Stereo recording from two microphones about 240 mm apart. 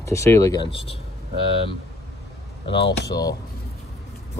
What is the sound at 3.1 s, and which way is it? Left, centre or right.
Speech, centre.